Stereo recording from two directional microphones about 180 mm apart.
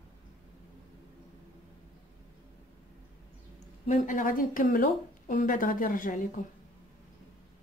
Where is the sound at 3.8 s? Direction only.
45° left (ahead or behind).